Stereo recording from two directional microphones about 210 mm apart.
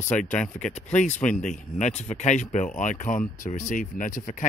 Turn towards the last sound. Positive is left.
turn(degrees=40)  # may be behind; listen again after turning